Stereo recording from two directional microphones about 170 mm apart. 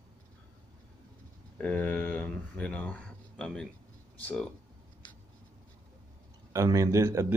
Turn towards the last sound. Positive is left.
turn(degrees=-15)  # may be behind; listen again after turning